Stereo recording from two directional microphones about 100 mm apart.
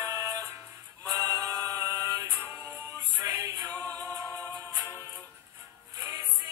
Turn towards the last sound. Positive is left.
turn(degrees=-30)  # may be behind; listen again after turning